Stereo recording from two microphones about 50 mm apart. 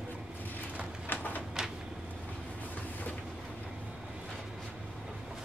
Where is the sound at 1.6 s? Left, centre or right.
Centre.